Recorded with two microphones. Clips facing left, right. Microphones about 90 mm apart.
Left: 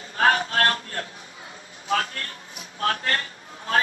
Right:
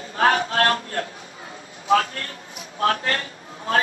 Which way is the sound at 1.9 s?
30° right (ahead or behind).